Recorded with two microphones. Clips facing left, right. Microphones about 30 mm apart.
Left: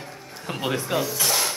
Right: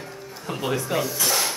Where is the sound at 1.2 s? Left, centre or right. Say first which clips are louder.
Even; centre.